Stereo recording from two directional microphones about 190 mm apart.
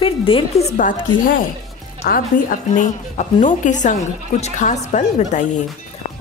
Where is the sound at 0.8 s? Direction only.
45° left (ahead or behind).